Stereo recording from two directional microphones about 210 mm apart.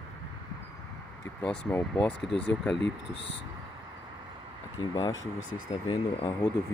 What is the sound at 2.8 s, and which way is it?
Speech, 55° left (ahead or behind).